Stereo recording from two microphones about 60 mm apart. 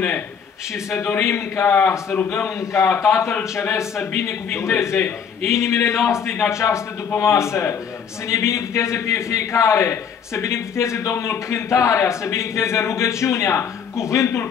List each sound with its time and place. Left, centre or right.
1.2 s a man's voice: left